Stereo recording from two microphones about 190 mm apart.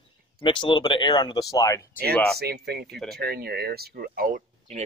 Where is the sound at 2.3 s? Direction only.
55° right (ahead or behind).